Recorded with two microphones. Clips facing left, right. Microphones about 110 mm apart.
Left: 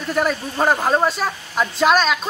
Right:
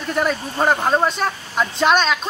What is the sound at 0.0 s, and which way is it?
Speech, centre (ahead or behind).